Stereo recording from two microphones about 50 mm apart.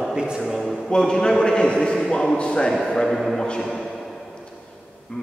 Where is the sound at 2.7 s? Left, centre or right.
Centre.